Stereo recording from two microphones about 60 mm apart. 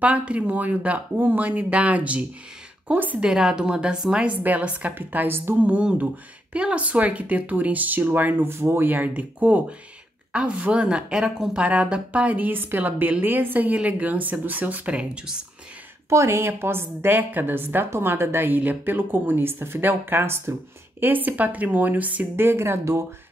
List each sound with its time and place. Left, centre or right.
0.0 s speech: right
3.2 s a woman's voice: centre
4.4 s speech: right
5.6 s speech: right
8.5 s speech: right
8.8 s speech: right
16.1 s a woman's voice: right
21.0 s speech: right
22.3 s speech: right